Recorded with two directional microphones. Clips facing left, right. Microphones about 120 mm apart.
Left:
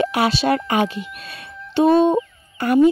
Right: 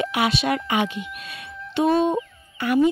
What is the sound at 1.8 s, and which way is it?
Music, 35° left (ahead or behind).